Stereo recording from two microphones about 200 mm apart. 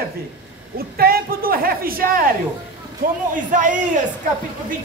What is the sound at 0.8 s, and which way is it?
A man's voice, 50° right (ahead or behind).